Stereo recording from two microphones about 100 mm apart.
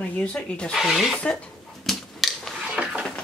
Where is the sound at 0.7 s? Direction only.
Centre (ahead or behind).